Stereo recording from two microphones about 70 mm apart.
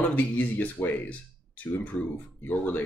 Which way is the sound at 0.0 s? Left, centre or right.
Left.